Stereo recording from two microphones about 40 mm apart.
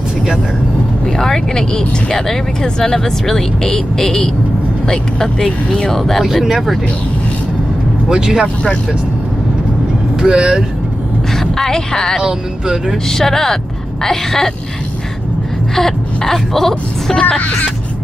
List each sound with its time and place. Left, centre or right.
1.0 s speech: centre
6.4 s speech: centre
8.1 s speech: centre
10.1 s speech: right
11.3 s a woman's voice: centre
12.2 s speech: centre
12.9 s speech: centre
15.7 s speech: centre
17.4 s speech: left